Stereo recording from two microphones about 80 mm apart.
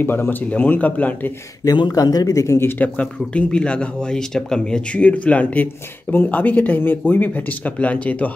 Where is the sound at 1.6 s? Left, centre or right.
Left.